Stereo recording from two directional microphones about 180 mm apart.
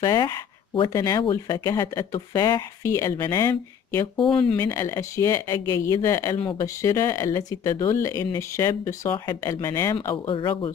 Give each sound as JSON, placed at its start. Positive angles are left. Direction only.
{"t": 0.0, "sound": "speech", "side_deg": 20}
{"t": 10.2, "sound": "speech", "side_deg": 30}